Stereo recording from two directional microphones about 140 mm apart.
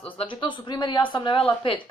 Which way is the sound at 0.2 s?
35° left (ahead or behind).